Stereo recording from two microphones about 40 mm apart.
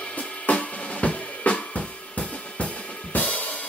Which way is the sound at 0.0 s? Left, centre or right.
Left.